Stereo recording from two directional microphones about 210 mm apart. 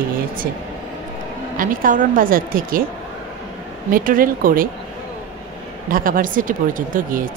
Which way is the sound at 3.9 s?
40° right (ahead or behind).